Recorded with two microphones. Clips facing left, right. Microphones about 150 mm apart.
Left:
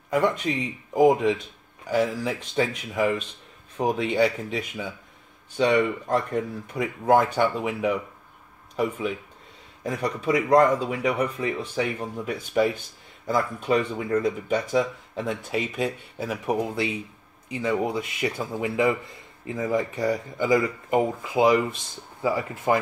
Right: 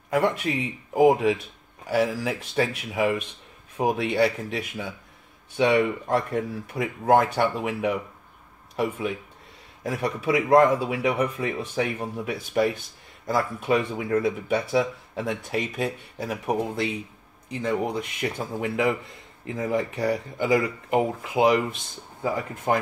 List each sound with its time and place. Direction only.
0.1 s speech: 5° right (ahead or behind)